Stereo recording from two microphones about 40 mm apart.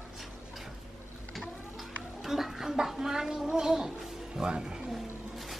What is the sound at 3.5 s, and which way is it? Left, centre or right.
Music, centre.